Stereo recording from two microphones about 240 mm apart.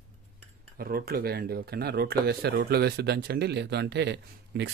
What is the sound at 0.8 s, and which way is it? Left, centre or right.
Speech, right.